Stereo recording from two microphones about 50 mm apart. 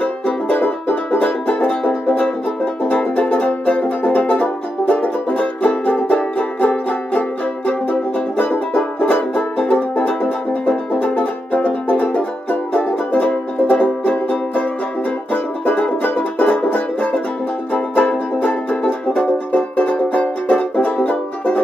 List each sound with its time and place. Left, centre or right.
0.0 s music: left